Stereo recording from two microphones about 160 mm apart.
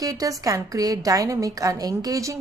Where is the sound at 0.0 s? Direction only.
20° right (ahead or behind).